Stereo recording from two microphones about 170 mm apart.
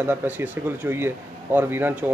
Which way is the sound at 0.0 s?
10° right (ahead or behind).